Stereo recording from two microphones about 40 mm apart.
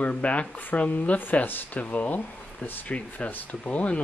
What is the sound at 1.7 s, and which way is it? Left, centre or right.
Speech, left.